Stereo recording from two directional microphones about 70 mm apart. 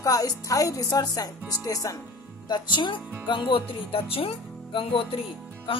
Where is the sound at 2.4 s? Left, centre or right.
Left.